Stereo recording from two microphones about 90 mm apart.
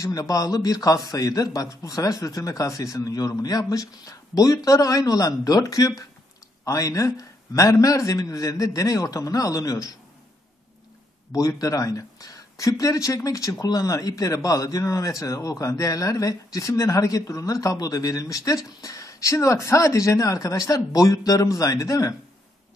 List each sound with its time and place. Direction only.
0.0 s speech: 40° left (ahead or behind)
11.3 s speech: 40° left (ahead or behind)